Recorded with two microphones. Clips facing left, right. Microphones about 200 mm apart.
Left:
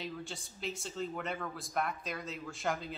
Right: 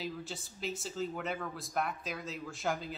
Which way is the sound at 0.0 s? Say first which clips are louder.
Right 1 dB; centre (ahead or behind).